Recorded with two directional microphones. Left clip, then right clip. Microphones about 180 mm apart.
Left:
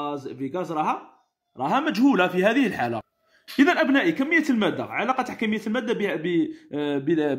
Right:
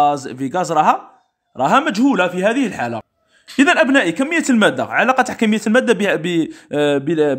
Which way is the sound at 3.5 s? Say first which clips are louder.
Right 7 dB; 30° right (ahead or behind).